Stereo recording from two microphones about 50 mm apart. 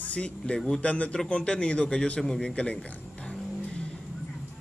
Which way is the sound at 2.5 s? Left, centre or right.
Left.